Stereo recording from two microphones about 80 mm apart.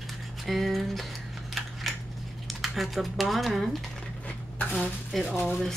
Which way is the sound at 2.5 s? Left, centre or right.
Centre.